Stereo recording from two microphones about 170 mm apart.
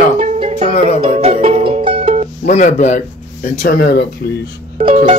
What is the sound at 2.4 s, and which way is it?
Speech, 45° left (ahead or behind).